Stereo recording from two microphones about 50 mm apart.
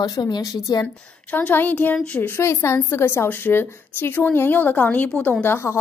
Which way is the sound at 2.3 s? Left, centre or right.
Left.